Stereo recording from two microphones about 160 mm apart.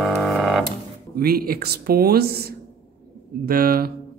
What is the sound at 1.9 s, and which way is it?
Speech, 70° right (ahead or behind).